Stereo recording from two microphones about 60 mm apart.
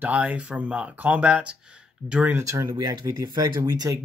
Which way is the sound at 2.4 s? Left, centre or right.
Right.